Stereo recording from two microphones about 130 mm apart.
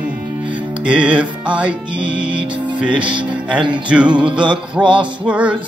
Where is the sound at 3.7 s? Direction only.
10° right (ahead or behind).